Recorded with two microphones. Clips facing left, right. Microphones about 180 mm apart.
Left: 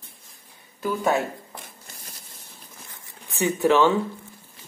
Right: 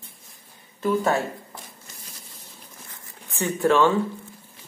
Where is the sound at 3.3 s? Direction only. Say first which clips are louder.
Left 1 dB; 15° left (ahead or behind).